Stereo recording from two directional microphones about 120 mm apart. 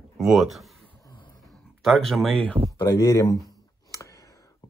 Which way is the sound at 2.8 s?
30° left (ahead or behind).